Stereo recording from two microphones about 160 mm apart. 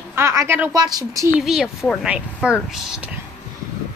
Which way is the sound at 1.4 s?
Centre (ahead or behind).